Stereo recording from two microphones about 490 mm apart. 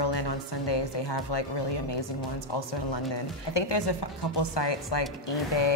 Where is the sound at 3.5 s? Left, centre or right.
Left.